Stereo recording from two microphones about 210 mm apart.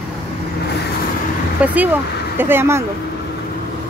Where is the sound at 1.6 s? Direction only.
5° right (ahead or behind).